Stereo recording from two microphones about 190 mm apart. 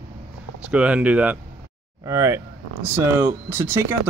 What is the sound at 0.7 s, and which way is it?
Speech, 5° right (ahead or behind).